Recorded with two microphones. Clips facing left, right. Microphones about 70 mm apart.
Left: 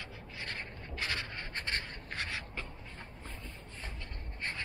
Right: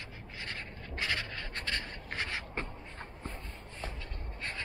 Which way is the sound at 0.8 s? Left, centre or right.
Left.